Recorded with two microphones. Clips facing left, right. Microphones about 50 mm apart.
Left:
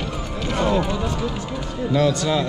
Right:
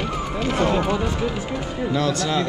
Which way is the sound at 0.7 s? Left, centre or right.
Centre.